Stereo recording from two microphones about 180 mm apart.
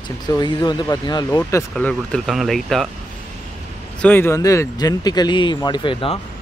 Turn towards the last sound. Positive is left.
turn(degrees=30)  # may be behind; listen again after turning